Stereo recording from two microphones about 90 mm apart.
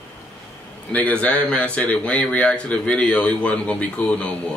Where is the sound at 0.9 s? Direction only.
15° left (ahead or behind).